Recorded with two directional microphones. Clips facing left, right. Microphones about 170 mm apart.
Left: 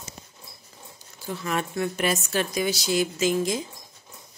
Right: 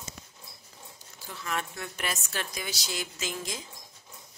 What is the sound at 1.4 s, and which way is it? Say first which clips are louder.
Speech: left 8 dB; 15° left (ahead or behind).